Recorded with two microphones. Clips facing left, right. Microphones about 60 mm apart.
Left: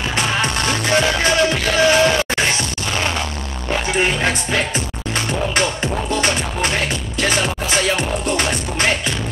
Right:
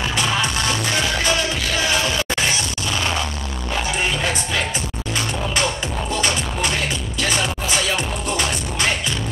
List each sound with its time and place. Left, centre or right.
0.1 s music: left
4.0 s music: left
6.0 s music: left